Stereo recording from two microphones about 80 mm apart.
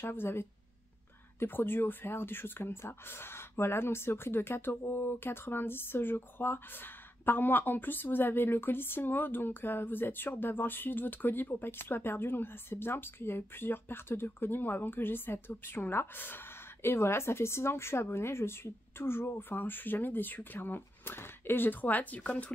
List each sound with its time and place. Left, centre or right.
0.0 s speech: left